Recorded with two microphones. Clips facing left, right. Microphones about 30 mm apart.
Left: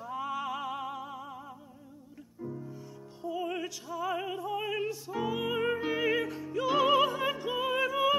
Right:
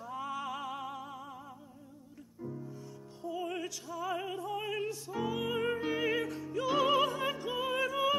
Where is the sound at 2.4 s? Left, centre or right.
Centre.